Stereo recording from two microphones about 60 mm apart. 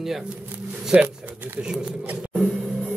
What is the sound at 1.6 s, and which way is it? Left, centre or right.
Speech, centre.